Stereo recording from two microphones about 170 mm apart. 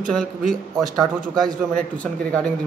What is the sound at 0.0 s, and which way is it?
A man's voice, 5° left (ahead or behind).